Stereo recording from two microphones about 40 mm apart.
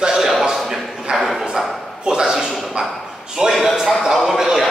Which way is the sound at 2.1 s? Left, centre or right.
Centre.